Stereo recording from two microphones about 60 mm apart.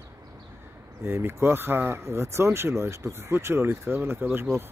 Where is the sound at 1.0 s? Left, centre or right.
Right.